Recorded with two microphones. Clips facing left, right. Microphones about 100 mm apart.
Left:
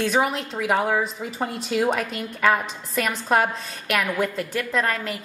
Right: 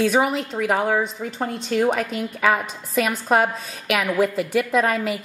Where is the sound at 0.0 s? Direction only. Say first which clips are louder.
Right 3 dB; centre (ahead or behind).